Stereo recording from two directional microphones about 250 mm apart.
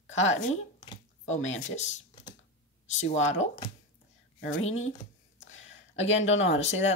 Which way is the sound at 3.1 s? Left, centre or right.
Left.